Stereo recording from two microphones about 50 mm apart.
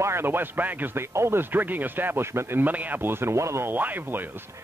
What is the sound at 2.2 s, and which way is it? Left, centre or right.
Speech, right.